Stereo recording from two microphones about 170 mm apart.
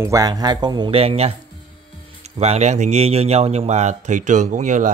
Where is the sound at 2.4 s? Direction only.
40° right (ahead or behind).